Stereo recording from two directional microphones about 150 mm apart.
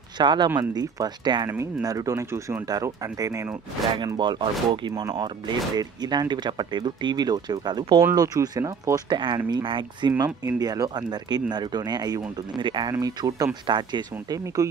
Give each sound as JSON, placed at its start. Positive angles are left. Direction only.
{"t": 0.2, "sound": "speech", "side_deg": -30}
{"t": 3.9, "sound": "speech", "side_deg": -30}